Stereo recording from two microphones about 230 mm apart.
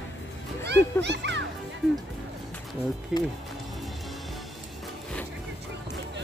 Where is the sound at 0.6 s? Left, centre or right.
Right.